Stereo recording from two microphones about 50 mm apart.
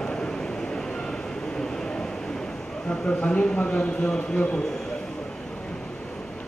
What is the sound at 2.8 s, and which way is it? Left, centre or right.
A man's voice, left.